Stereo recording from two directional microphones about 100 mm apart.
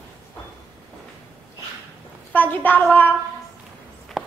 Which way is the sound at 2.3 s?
15° left (ahead or behind).